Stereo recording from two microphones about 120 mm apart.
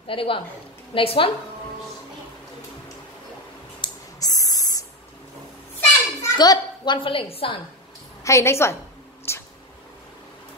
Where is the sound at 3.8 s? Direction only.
30° left (ahead or behind).